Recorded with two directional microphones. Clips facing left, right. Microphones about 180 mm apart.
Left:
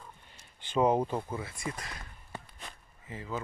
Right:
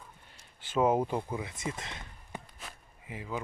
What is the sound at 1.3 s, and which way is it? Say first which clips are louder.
Speech: right 1 dB; 15° right (ahead or behind).